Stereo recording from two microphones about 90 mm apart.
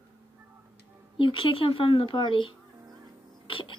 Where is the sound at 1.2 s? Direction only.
75° left (ahead or behind).